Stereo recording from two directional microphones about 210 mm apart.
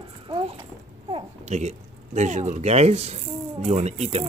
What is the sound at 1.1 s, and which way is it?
Speech, 30° right (ahead or behind).